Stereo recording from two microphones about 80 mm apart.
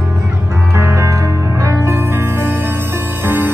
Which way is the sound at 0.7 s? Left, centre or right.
Right.